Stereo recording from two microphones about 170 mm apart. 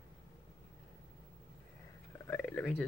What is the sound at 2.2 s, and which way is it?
Speech, 10° left (ahead or behind).